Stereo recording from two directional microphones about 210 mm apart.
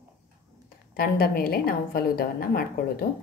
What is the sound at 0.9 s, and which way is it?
A woman's voice, 45° left (ahead or behind).